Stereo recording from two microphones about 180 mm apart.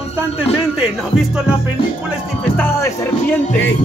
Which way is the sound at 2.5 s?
15° left (ahead or behind).